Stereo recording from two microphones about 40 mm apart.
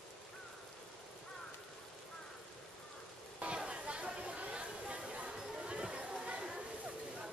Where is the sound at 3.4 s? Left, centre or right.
Right.